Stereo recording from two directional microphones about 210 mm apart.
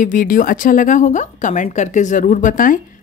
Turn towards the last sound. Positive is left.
turn(degrees=40)  # may be behind; listen again after turning